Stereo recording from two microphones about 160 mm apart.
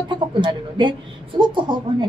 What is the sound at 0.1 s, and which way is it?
A woman's voice, 30° right (ahead or behind).